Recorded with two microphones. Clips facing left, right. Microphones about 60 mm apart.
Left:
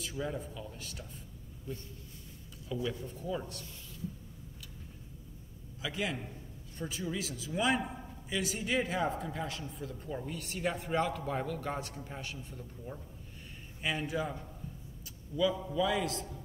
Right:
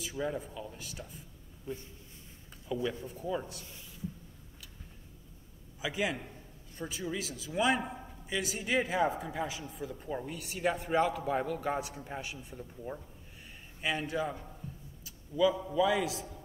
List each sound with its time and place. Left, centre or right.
0.0 s a man's voice: centre
1.7 s speech: right
3.2 s a man's voice: centre
5.8 s a man's voice: centre
13.8 s a man's voice: centre